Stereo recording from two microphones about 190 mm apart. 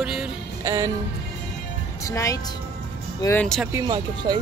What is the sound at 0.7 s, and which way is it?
Music, 15° right (ahead or behind).